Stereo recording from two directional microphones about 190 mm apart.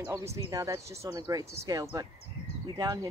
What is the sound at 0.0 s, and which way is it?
Speech, 15° right (ahead or behind).